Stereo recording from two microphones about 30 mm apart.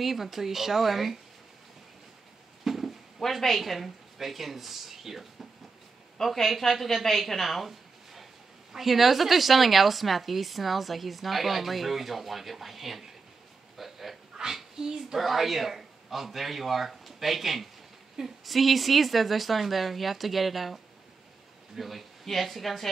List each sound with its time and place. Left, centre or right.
0.0 s speech: centre
2.6 s a sound: centre
3.2 s a woman's voice: centre
6.2 s a woman's voice: centre
6.7 s a woman's voice: centre
13.7 s dog: centre
14.4 s a sound: centre
15.1 s a man's voice: centre